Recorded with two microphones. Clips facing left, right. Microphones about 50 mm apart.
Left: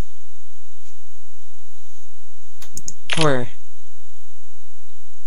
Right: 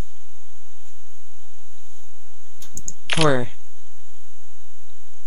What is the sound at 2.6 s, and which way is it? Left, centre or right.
Computer keyboard, left.